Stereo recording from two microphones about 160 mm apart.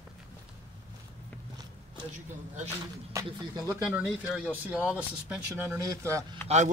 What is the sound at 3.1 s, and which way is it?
Speech, 20° right (ahead or behind).